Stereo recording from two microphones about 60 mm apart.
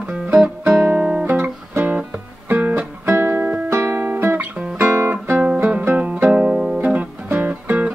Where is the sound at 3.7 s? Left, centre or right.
Right.